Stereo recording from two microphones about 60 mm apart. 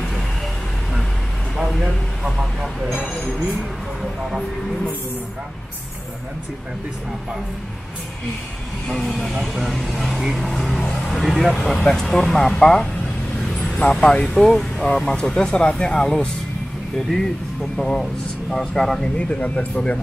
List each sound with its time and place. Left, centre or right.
1.6 s speech: centre
4.0 s speech: centre
8.8 s speech: centre
13.4 s vehicle: centre
14.4 s speech: centre
19.1 s speech: centre